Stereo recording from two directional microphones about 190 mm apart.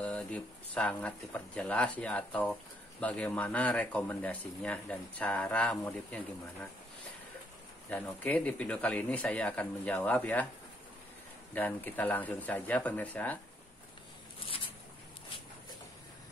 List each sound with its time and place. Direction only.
0.0 s speech: 5° left (ahead or behind)
7.9 s speech: 5° left (ahead or behind)
11.5 s speech: 10° left (ahead or behind)
14.4 s a sound: 30° left (ahead or behind)